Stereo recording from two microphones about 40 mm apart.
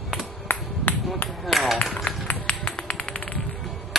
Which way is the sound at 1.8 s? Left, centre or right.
Left.